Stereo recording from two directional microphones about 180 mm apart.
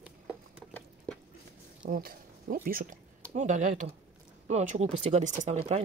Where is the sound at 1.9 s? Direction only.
55° right (ahead or behind).